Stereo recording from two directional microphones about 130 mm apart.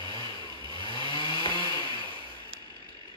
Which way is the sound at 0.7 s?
40° left (ahead or behind).